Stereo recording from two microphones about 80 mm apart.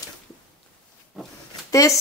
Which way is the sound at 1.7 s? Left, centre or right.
Left.